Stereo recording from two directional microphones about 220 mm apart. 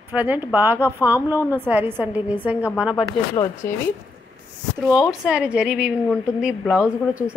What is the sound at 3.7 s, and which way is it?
Speech, 10° left (ahead or behind).